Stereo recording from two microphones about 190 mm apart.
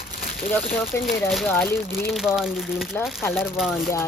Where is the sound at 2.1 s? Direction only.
Centre (ahead or behind).